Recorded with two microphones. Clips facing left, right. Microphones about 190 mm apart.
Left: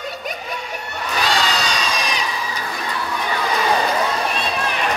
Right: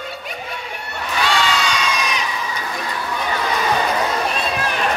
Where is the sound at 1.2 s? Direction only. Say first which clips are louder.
Right 2 dB; 40° left (ahead or behind).